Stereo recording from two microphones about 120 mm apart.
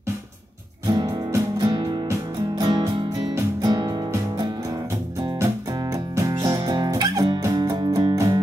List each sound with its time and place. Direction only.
0.8 s music: 35° right (ahead or behind)
5.2 s music: 30° right (ahead or behind)